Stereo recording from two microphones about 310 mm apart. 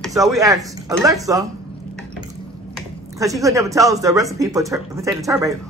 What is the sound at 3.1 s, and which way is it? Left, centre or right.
A man's voice, centre.